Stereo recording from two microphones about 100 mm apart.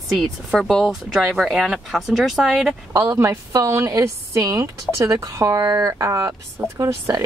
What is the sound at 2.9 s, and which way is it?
A woman's voice, 25° right (ahead or behind).